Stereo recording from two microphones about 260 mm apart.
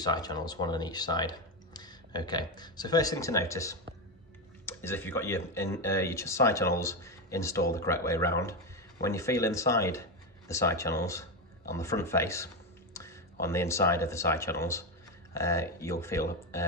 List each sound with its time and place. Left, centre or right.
0.0 s speech: centre